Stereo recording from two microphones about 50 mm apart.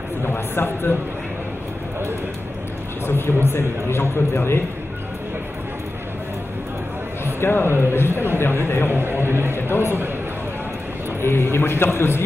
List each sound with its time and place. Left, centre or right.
0.2 s speech: left
3.1 s a man's voice: left
7.3 s a man's voice: left
8.9 s a man's voice: right
9.6 s a man's voice: left
11.5 s a man's voice: left